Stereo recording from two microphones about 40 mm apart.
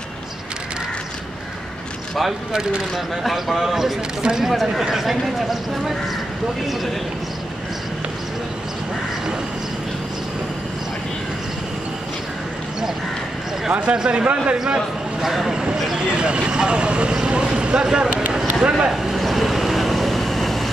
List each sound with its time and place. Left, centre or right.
3.3 s speech: centre
4.5 s speech: centre
13.7 s speech: right
13.9 s speech: right
15.2 s speech: centre
15.5 s speech: centre
17.8 s speech: centre
19.1 s vehicle: centre